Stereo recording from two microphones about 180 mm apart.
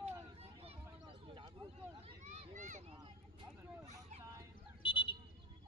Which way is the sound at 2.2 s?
45° right (ahead or behind).